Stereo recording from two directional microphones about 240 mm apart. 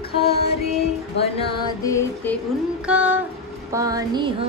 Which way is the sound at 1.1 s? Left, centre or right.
Left.